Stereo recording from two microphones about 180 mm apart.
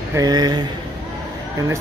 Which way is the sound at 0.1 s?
20° right (ahead or behind).